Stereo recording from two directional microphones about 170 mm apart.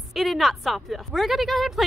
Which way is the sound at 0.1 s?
Centre (ahead or behind).